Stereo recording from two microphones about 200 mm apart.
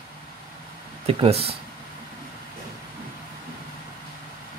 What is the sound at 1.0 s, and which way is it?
Speech, 30° right (ahead or behind).